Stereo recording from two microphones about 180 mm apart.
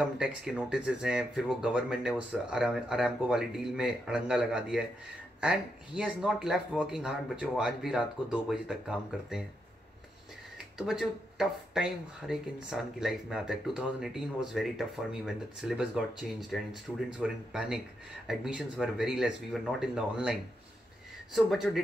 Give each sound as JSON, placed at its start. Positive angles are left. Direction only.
{"t": 0.0, "sound": "speech", "side_deg": -5}
{"t": 10.8, "sound": "speech", "side_deg": 0}
{"t": 21.5, "sound": "speech", "side_deg": 0}